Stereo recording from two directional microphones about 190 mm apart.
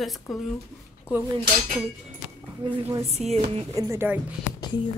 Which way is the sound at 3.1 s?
35° right (ahead or behind).